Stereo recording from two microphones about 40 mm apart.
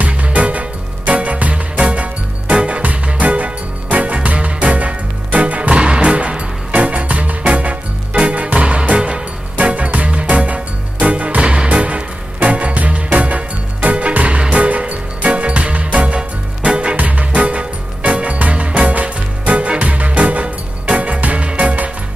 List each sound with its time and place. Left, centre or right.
0.0 s music: right
11.8 s music: right
16.9 s music: right